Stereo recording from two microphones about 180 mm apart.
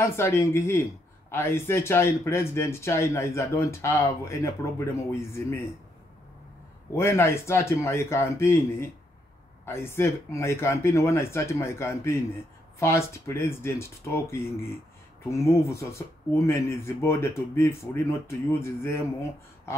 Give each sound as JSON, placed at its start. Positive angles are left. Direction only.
{"t": 0.0, "sound": "speech", "side_deg": 15}
{"t": 6.9, "sound": "speech", "side_deg": 15}